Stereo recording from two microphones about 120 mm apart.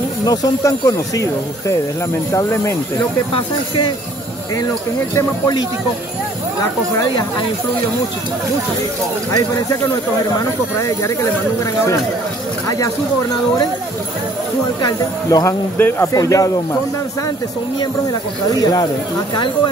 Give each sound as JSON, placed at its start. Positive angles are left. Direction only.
{"t": 0.2, "sound": "speech", "side_deg": 35}
{"t": 7.0, "sound": "speech", "side_deg": 35}
{"t": 12.6, "sound": "speech", "side_deg": 25}
{"t": 14.8, "sound": "speech", "side_deg": 30}
{"t": 18.5, "sound": "speech", "side_deg": 30}